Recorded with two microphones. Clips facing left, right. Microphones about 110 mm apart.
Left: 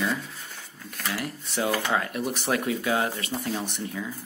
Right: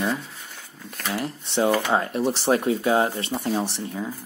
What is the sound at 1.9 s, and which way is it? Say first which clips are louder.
Speech: right 5 dB; 30° right (ahead or behind).